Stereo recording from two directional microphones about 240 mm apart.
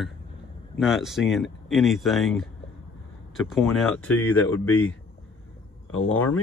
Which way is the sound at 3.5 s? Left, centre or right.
Centre.